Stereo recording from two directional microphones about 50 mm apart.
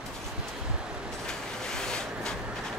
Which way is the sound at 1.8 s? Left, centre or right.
Centre.